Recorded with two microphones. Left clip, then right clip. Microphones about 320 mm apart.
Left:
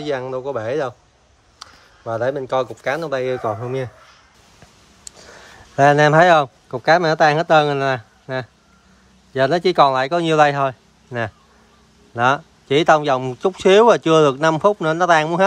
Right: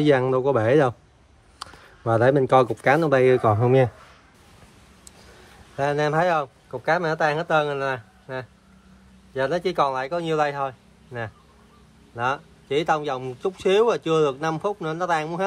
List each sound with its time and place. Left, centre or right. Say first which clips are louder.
0.0 s speech: right 4 dB; right
1.6 s a sound: right 2 dB; right
2.8 s speech: right 3 dB; right
5.8 s speech: left 10 dB; left